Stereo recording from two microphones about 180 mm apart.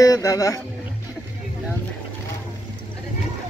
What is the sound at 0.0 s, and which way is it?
Speech, 20° left (ahead or behind).